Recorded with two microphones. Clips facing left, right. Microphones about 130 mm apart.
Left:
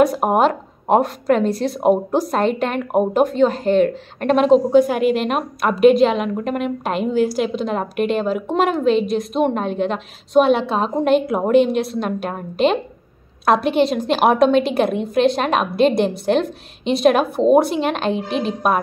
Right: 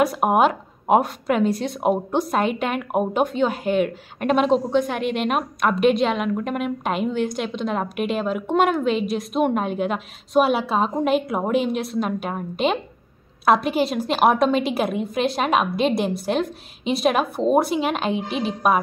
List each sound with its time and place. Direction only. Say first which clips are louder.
0.0 s a woman's voice: left 3 dB; 5° right (ahead or behind)